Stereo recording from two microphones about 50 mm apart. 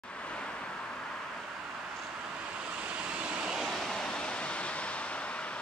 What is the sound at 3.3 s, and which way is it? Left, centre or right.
Vehicle, centre.